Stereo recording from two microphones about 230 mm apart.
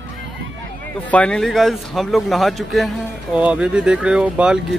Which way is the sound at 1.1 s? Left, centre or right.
Centre.